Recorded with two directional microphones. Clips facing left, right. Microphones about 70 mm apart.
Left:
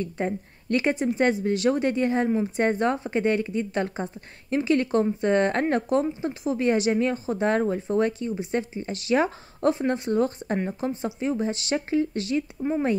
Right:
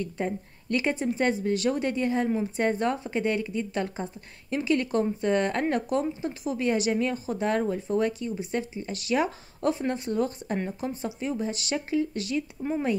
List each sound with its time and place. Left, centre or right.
0.0 s speech: left